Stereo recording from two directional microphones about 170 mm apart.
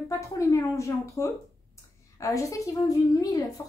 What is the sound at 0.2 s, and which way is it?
Speech, 20° left (ahead or behind).